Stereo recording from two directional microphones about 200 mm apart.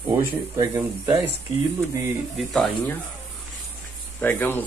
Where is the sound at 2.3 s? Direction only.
Centre (ahead or behind).